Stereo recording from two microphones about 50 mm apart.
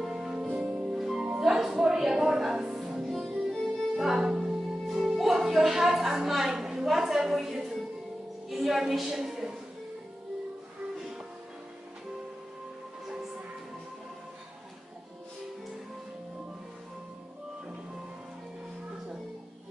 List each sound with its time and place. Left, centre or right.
0.0 s music: centre
0.5 s music: right
0.8 s music: centre
8.5 s a woman's voice: centre